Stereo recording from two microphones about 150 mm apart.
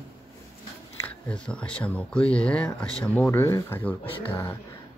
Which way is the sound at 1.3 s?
5° left (ahead or behind).